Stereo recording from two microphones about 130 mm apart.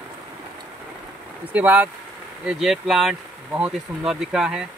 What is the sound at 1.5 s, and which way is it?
Speech, 10° right (ahead or behind).